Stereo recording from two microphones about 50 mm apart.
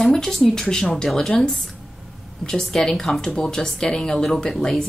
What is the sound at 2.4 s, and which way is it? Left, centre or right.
Speech, centre.